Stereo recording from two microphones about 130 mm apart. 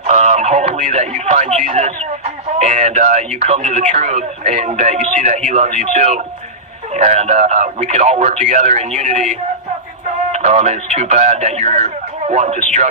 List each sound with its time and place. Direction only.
0.0 s speech: 65° right (ahead or behind)